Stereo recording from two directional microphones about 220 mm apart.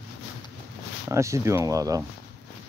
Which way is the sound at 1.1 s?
15° right (ahead or behind).